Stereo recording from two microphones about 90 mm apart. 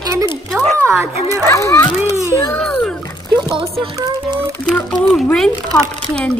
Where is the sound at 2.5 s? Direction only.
10° left (ahead or behind).